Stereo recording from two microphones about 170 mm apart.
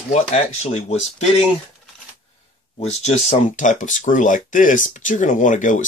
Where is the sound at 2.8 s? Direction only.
40° left (ahead or behind).